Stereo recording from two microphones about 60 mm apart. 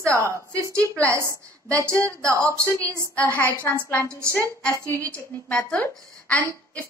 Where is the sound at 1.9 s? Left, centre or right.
Centre.